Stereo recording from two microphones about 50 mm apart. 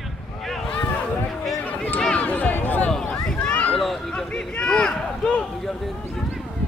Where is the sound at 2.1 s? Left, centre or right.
Left.